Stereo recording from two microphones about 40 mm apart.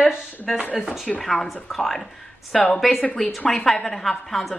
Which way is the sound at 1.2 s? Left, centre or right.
Centre.